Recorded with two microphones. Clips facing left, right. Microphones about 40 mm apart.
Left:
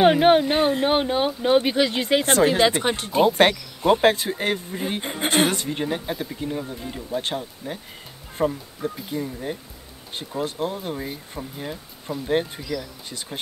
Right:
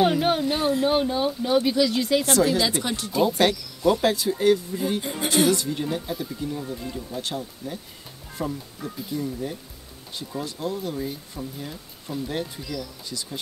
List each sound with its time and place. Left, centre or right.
0.0 s speech: left